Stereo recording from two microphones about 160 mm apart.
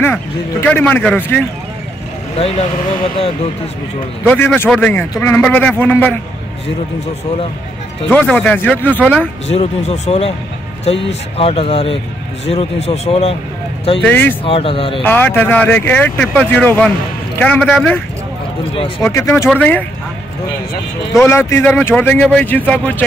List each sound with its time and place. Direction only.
0.0 s speech: 10° left (ahead or behind)
2.3 s speech: 40° left (ahead or behind)
4.3 s speech: 10° left (ahead or behind)
8.1 s speech: 10° left (ahead or behind)
9.5 s speech: 40° left (ahead or behind)
11.3 s speech: 35° left (ahead or behind)
14.0 s speech: 10° left (ahead or behind)
14.4 s speech: 35° left (ahead or behind)
15.0 s speech: 10° left (ahead or behind)
19.0 s speech: 15° left (ahead or behind)
21.1 s speech: 15° left (ahead or behind)